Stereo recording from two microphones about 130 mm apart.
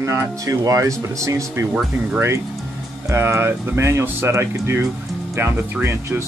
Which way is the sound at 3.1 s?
20° right (ahead or behind).